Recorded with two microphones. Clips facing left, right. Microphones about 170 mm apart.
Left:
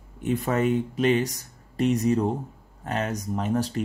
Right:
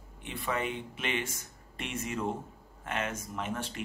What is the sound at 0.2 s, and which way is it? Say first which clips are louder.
Speech: left 10 dB; 45° left (ahead or behind).